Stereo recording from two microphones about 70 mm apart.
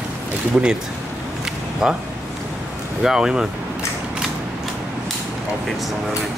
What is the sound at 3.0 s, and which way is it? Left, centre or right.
Speech, centre.